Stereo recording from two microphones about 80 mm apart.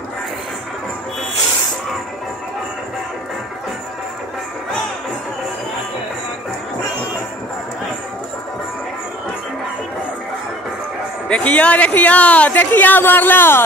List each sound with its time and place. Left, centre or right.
11.2 s speech: centre